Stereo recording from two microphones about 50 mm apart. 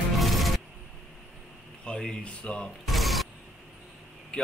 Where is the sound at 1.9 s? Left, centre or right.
Left.